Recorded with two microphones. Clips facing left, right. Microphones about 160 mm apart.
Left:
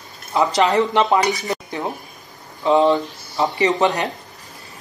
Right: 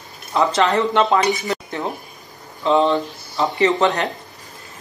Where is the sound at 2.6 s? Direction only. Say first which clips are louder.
Left 1 dB; 15° left (ahead or behind).